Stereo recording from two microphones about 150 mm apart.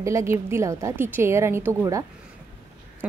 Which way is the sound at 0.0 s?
20° right (ahead or behind).